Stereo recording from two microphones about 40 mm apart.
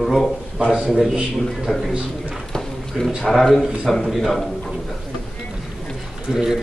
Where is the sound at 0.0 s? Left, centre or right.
Centre.